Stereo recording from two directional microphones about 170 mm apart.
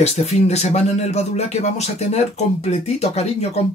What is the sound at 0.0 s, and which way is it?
Speech, 40° left (ahead or behind).